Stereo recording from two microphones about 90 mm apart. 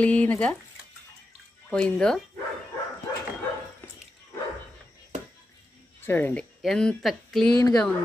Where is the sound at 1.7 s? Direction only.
10° left (ahead or behind).